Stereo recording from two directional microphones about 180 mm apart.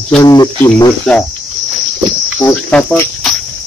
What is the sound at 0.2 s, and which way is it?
Speech, 20° left (ahead or behind).